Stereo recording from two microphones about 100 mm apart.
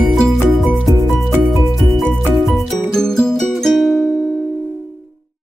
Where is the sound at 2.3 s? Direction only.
Centre (ahead or behind).